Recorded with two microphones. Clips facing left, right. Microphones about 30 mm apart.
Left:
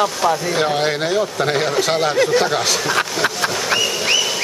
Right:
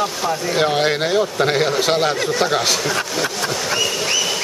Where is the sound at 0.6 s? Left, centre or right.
Centre.